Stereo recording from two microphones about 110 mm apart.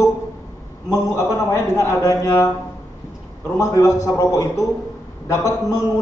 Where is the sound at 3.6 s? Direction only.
30° left (ahead or behind).